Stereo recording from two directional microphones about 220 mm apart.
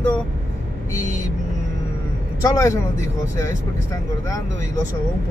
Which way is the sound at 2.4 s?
15° left (ahead or behind).